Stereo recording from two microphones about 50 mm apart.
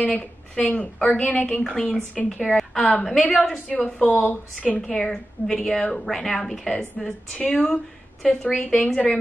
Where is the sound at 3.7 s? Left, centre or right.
Left.